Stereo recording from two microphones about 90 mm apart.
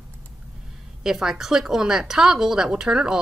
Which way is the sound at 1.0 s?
5° right (ahead or behind).